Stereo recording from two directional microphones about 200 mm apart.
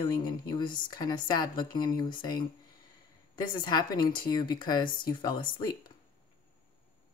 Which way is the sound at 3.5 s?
20° left (ahead or behind).